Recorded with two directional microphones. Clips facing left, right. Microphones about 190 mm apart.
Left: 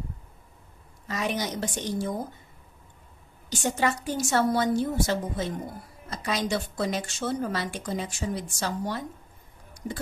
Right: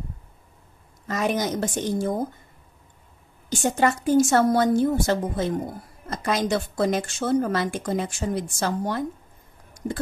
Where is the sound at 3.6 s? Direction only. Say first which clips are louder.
Right 5 dB; 50° right (ahead or behind).